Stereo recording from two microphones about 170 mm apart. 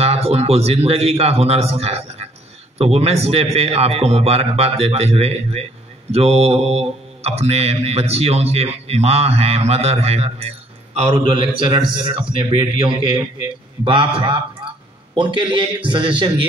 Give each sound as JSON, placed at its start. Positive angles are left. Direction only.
{"t": 0.0, "sound": "a man's voice", "side_deg": -35}
{"t": 2.8, "sound": "mantra", "side_deg": -35}
{"t": 12.1, "sound": "a man's voice", "side_deg": -30}
{"t": 13.8, "sound": "mantra", "side_deg": -30}
{"t": 15.1, "sound": "a man's voice", "side_deg": -30}